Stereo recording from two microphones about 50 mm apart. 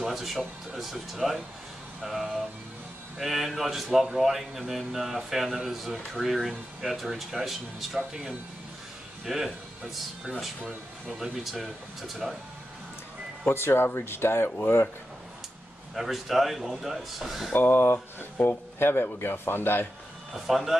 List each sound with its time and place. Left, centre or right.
0.0 s speech: centre
12.2 s speech: centre
13.5 s speech: left
15.9 s speech: centre
17.6 s speech: left
20.3 s speech: centre